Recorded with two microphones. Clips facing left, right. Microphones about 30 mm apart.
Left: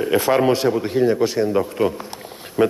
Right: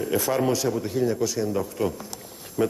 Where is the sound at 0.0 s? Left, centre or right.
Left.